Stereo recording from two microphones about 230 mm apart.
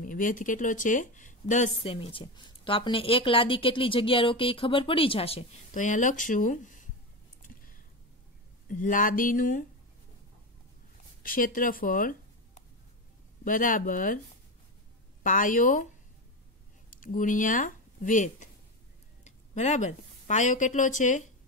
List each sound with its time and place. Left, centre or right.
0.0 s speech: left
7.4 s a sound: left
8.6 s speech: left
11.2 s speech: left
15.2 s speech: left
16.9 s speech: left